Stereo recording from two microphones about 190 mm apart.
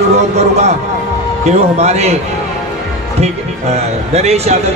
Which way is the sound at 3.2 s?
35° right (ahead or behind).